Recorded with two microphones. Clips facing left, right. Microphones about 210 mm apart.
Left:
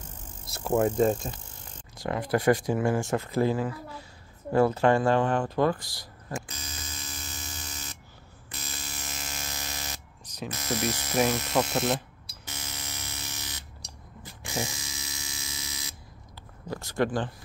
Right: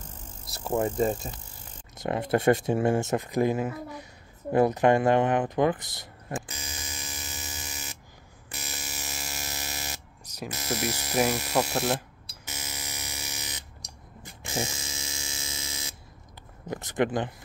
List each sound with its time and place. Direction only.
0.5 s speech: centre (ahead or behind)
2.0 s speech: 25° right (ahead or behind)
6.5 s alarm: 10° right (ahead or behind)
8.5 s electric shaver: 10° right (ahead or behind)
10.3 s speech: 10° right (ahead or behind)
12.4 s alarm: 10° right (ahead or behind)
14.4 s electric shaver: 30° right (ahead or behind)
16.6 s speech: 20° right (ahead or behind)